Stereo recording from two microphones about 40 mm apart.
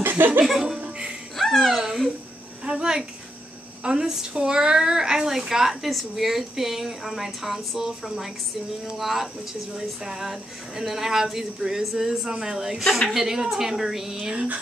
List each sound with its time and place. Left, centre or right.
0.0 s laughter: right
0.5 s laughter: centre
0.7 s music: right
1.3 s music: centre
2.6 s a sound: centre
3.8 s speech: centre